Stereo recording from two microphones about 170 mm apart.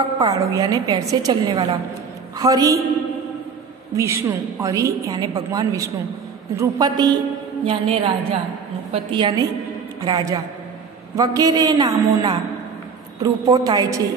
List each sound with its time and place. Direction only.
0.2 s a woman's voice: 20° right (ahead or behind)
3.9 s a woman's voice: 15° right (ahead or behind)